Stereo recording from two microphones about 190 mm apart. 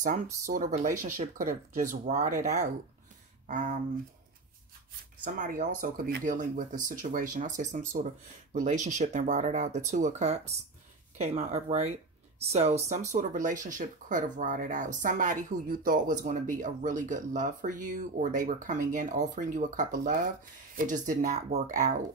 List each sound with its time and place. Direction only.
0.0 s speech: 45° right (ahead or behind)
5.2 s speech: 45° right (ahead or behind)